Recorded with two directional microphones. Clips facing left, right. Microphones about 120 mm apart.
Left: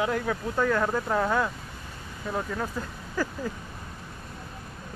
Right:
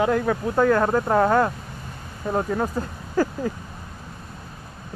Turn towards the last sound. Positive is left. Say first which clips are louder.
# right 7 dB
turn(degrees=-45)  # may be behind; listen again after turning